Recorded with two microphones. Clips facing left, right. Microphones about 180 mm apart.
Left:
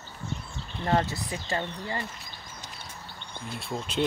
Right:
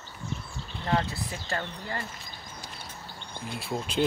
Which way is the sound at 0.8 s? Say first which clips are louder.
Left 2 dB; 25° left (ahead or behind).